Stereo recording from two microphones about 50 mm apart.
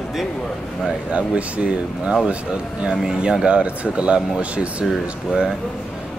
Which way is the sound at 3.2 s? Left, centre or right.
Centre.